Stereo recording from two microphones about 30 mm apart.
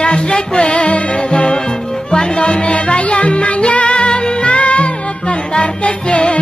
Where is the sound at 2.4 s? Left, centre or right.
Left.